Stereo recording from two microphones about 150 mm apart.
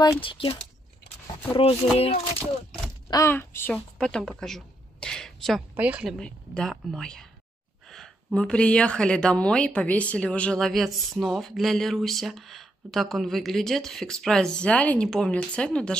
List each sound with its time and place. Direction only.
0.0 s speech: 35° left (ahead or behind)
2.0 s speech: 40° left (ahead or behind)
3.1 s speech: 20° left (ahead or behind)
4.0 s a sound: 5° left (ahead or behind)
5.8 s a woman's voice: 10° right (ahead or behind)
6.1 s speech: 5° left (ahead or behind)